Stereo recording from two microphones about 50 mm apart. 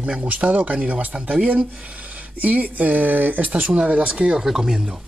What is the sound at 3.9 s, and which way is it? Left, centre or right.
Speech, right.